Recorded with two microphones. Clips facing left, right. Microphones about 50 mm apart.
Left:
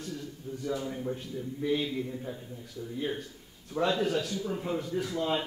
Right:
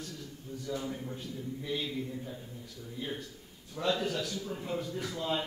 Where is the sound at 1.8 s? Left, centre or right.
Centre.